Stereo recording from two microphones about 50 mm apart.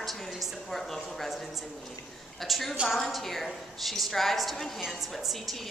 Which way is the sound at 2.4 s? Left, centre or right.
Centre.